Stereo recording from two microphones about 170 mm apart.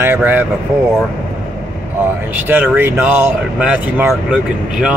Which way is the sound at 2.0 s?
10° right (ahead or behind).